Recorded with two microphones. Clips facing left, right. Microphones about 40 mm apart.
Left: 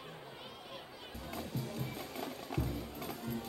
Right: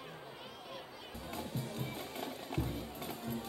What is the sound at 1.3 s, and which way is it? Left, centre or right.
Music, right.